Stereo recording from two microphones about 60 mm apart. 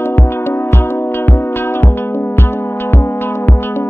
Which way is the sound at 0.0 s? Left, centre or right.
Left.